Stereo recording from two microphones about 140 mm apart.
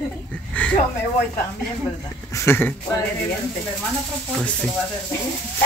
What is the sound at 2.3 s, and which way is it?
Speech, 15° left (ahead or behind).